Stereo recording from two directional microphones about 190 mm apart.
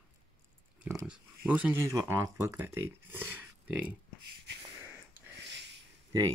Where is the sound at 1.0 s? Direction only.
5° right (ahead or behind).